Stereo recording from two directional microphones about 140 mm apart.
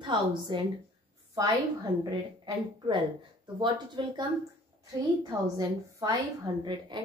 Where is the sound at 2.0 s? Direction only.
35° right (ahead or behind).